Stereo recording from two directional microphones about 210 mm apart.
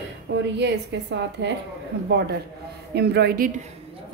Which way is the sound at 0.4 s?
55° right (ahead or behind).